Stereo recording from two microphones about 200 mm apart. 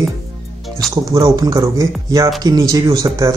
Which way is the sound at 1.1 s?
15° right (ahead or behind).